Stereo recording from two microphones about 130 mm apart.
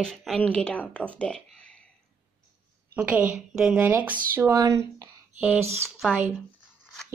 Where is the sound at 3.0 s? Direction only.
10° right (ahead or behind); by 5.1 s 25° right (ahead or behind).